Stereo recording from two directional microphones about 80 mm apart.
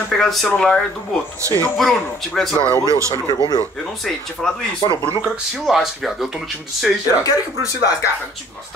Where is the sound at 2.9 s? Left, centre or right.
Right.